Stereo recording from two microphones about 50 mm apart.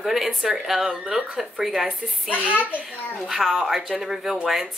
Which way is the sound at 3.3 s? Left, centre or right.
Centre.